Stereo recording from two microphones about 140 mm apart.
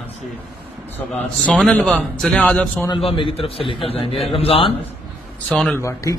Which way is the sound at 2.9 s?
40° left (ahead or behind).